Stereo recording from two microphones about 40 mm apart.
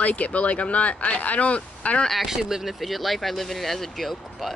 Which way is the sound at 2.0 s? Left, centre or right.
Centre.